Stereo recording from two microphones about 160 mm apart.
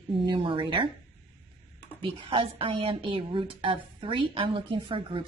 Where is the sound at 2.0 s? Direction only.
35° right (ahead or behind).